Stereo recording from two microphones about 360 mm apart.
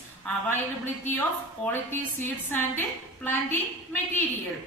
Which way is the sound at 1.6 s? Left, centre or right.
Centre.